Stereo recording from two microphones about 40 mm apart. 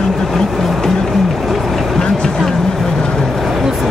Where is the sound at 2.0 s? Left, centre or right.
Centre.